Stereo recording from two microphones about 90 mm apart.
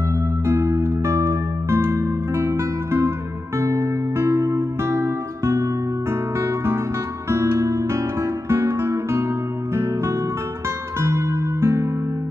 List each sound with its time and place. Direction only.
0.1 s music: 30° right (ahead or behind)
6.4 s guitar: 30° right (ahead or behind)
7.2 s music: 30° right (ahead or behind)
11.0 s music: 30° right (ahead or behind)